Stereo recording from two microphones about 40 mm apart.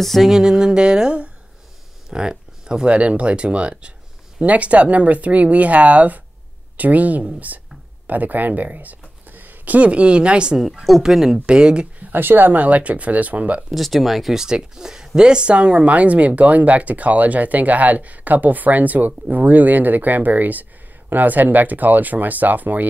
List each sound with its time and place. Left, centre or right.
0.0 s speech: centre
0.3 s music: centre
2.0 s a sound: centre
2.9 s music: right
4.4 s speech: right
8.7 s a sound: right
9.8 s music: right
10.6 s speech: centre
11.0 s speech: centre
11.4 s music: right
12.1 s speech: right
12.5 s speech: right
13.7 s speech: centre
14.3 s speech: centre; by 22.8 s right